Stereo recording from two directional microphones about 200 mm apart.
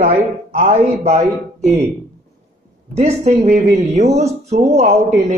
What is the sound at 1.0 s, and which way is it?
Speech, 35° right (ahead or behind).